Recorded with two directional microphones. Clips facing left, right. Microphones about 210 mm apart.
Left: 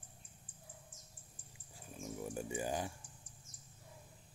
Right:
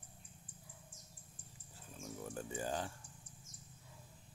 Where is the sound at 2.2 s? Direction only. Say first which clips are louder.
Left 2 dB; 15° left (ahead or behind).